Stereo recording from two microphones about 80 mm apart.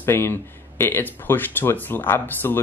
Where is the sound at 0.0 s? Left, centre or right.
Left.